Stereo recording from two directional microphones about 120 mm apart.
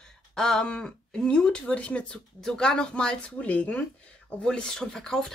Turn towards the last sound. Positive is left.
turn(degrees=5)  # may be behind; listen again after turning